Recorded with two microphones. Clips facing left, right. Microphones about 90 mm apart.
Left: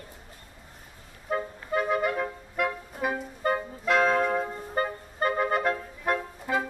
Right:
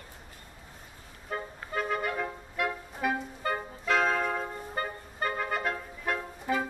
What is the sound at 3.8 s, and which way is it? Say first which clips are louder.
Music: left 4 dB; 5° left (ahead or behind).